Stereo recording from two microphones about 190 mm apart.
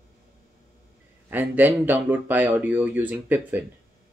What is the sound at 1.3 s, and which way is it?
Speech, 10° right (ahead or behind).